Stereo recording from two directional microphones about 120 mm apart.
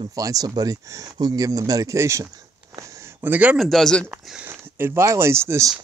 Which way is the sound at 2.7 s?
25° right (ahead or behind).